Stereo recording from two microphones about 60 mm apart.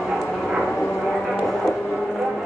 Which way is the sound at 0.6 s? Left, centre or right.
Centre.